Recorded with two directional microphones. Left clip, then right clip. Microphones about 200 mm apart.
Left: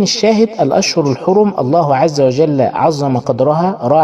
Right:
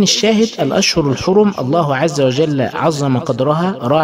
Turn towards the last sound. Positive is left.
turn(degrees=-10)  # may be behind; listen again after turning